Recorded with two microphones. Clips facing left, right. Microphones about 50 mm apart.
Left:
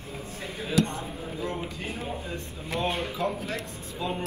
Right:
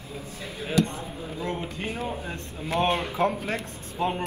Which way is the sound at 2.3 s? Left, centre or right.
Right.